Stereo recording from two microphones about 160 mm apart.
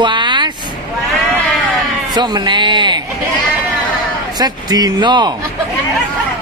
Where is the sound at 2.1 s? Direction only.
30° right (ahead or behind).